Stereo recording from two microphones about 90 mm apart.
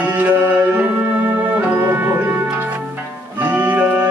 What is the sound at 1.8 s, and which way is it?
Music, 25° right (ahead or behind).